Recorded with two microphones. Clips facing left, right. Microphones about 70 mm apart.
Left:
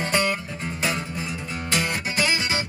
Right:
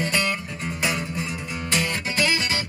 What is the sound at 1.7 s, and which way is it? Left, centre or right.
Music, centre.